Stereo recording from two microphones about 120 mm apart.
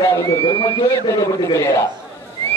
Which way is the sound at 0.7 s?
30° left (ahead or behind).